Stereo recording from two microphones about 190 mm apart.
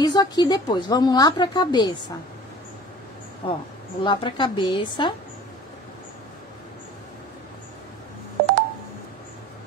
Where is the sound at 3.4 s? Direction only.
25° left (ahead or behind).